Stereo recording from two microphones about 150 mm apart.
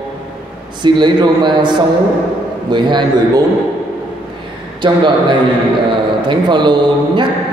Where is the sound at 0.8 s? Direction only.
30° right (ahead or behind).